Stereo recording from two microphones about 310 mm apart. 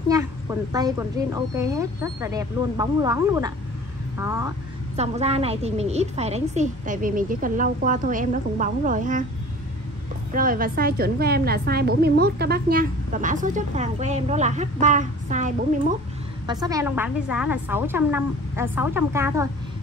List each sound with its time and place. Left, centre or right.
0.1 s a woman's voice: centre
10.3 s a woman's voice: right
16.4 s a woman's voice: centre